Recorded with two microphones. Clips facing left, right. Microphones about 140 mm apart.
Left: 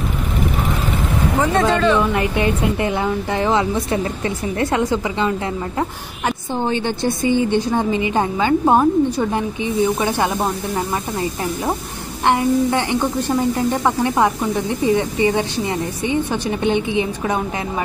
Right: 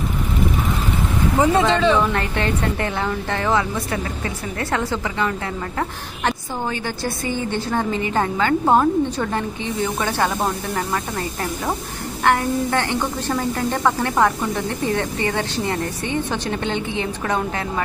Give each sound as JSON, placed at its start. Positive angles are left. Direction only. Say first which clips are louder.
{"t": 1.4, "sound": "speech", "louder": "even", "side_deg": -10}
{"t": 2.1, "sound": "a woman's voice", "louder": "left 4 dB", "side_deg": 10}
{"t": 6.6, "sound": "a woman's voice", "louder": "left 6 dB", "side_deg": 25}